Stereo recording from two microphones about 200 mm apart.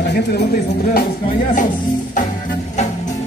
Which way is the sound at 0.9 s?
45° left (ahead or behind).